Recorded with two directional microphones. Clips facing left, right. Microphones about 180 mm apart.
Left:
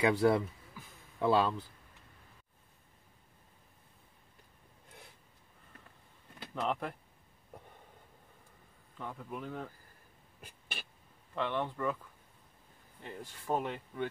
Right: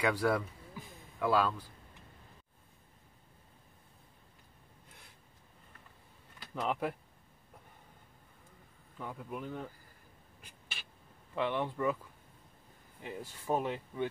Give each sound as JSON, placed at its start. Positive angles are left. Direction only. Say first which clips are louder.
{"t": 0.0, "sound": "speech", "louder": "left 3 dB", "side_deg": 25}
{"t": 6.5, "sound": "speech", "louder": "right 1 dB", "side_deg": -5}
{"t": 8.9, "sound": "a man's voice", "louder": "right 1 dB", "side_deg": -5}
{"t": 11.3, "sound": "speech", "louder": "right 1 dB", "side_deg": -10}
{"t": 13.0, "sound": "speech", "louder": "right 2 dB", "side_deg": -10}